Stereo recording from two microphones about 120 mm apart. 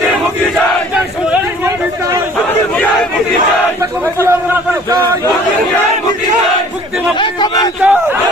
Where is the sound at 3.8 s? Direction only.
25° right (ahead or behind).